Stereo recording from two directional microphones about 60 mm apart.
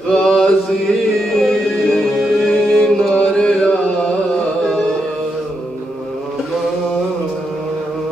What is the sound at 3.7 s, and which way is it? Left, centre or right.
Music, centre.